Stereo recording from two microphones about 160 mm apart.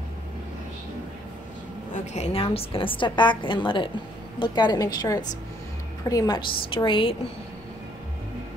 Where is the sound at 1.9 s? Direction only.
45° left (ahead or behind).